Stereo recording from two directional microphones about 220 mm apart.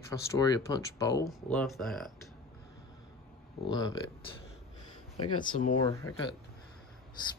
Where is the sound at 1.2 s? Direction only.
Centre (ahead or behind).